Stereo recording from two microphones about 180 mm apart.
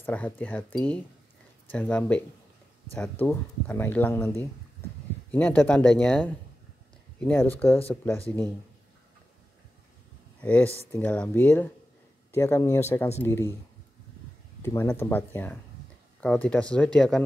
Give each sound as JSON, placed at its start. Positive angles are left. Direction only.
{"t": 0.0, "sound": "speech", "side_deg": 10}
{"t": 10.4, "sound": "speech", "side_deg": 10}
{"t": 14.6, "sound": "speech", "side_deg": 15}